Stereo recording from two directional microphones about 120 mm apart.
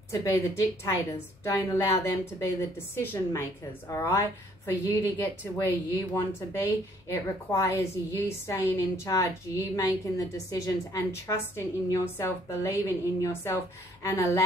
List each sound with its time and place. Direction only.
0.1 s a woman's voice: 25° left (ahead or behind)
3.0 s a woman's voice: 20° left (ahead or behind)